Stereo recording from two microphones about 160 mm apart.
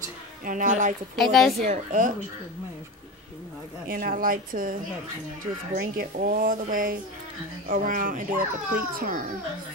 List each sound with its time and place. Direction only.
0.5 s speech: 55° right (ahead or behind)
1.1 s a woman's voice: centre (ahead or behind)
1.7 s speech: 55° right (ahead or behind)
3.8 s speech: 60° right (ahead or behind)